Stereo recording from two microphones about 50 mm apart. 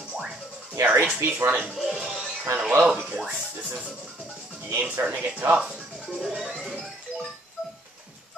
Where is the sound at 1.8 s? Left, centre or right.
Centre.